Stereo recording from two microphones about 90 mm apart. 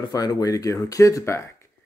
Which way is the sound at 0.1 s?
45° left (ahead or behind).